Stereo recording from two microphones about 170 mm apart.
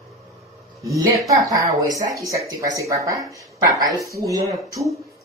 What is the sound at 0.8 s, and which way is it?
A woman's voice, 20° right (ahead or behind).